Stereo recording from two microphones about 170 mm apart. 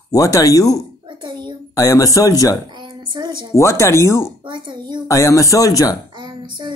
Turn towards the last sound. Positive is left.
turn(degrees=-25)  # may be behind; listen again after turning